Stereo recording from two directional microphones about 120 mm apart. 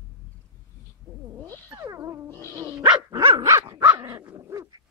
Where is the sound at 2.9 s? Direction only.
35° right (ahead or behind).